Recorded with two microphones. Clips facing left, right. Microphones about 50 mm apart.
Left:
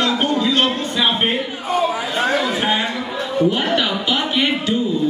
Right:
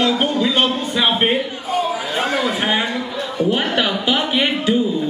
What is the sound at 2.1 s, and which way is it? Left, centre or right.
Chatter, centre.